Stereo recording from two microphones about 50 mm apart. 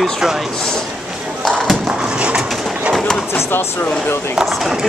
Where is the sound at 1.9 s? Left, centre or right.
Centre.